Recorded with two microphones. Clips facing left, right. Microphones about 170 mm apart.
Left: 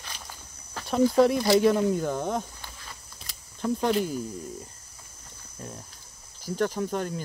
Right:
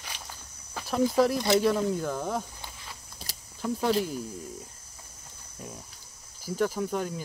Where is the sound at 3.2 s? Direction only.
35° right (ahead or behind).